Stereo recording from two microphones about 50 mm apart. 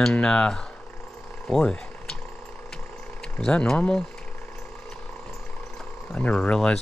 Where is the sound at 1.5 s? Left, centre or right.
Centre.